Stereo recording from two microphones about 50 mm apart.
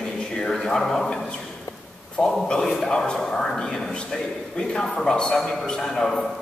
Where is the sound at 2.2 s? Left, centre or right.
Centre.